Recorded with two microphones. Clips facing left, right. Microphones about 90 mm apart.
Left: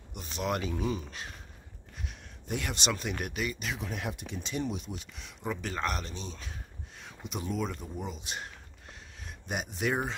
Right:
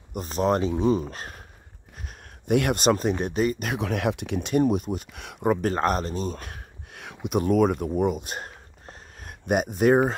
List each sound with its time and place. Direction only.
0.1 s speech: 40° right (ahead or behind)
2.4 s speech: 60° right (ahead or behind)